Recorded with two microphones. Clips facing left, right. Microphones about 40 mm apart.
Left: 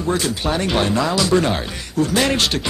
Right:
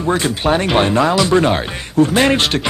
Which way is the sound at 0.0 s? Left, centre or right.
Right.